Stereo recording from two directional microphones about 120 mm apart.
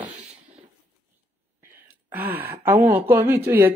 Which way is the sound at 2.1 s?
15° right (ahead or behind).